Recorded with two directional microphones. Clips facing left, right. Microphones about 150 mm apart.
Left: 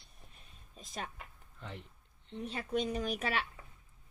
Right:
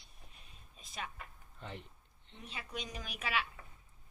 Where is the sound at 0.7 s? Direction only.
45° left (ahead or behind).